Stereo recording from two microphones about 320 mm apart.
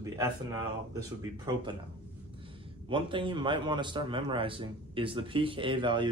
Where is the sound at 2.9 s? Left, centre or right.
Centre.